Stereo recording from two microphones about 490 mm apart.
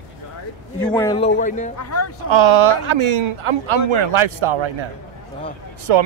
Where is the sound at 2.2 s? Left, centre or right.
Right.